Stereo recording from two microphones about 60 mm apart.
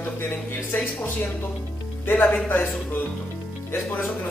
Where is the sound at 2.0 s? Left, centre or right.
Left.